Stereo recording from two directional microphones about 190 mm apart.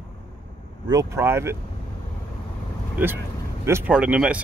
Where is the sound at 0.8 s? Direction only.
15° right (ahead or behind).